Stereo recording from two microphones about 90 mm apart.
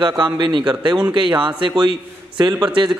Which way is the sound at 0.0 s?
60° right (ahead or behind).